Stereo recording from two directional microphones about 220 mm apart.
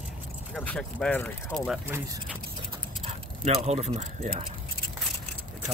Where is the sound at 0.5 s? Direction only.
5° left (ahead or behind).